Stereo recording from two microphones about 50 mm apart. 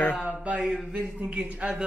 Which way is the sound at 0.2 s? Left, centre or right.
Right.